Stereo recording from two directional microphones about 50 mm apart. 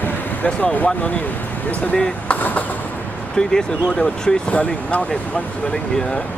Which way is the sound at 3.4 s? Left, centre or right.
Centre.